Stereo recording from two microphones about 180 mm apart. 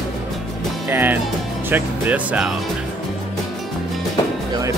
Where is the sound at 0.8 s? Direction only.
10° right (ahead or behind).